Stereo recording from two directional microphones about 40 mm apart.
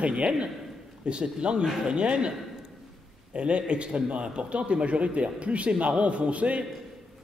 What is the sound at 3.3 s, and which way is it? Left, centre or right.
A man's voice, right.